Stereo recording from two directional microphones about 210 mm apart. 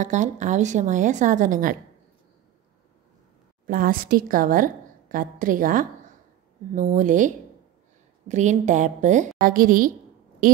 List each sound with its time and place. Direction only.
0.0 s a woman's voice: 35° right (ahead or behind)
3.6 s a woman's voice: 45° right (ahead or behind)